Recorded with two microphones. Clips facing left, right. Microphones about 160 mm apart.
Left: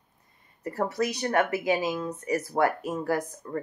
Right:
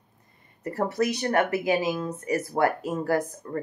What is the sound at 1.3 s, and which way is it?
Speech, 30° right (ahead or behind).